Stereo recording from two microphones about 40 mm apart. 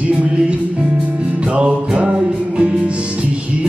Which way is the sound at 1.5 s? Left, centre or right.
Right.